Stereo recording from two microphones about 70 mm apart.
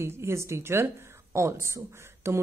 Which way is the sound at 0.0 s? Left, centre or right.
Right.